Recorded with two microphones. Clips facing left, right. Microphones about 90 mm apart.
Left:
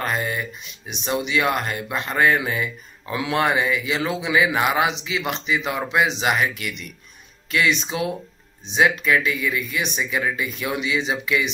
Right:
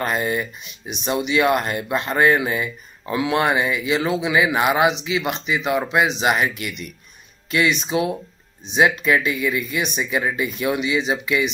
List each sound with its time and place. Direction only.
0.0 s speech: 15° right (ahead or behind)
6.3 s speech: 20° right (ahead or behind)